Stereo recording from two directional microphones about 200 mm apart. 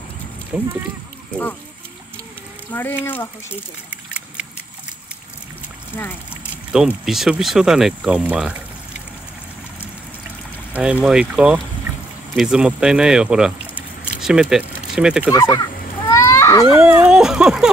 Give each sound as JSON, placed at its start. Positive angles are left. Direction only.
{"t": 0.5, "sound": "speech", "side_deg": -5}
{"t": 2.7, "sound": "speech", "side_deg": 10}
{"t": 6.3, "sound": "speech", "side_deg": -5}
{"t": 10.7, "sound": "speech", "side_deg": -5}
{"t": 15.3, "sound": "a sound", "side_deg": 15}
{"t": 16.7, "sound": "speech", "side_deg": -5}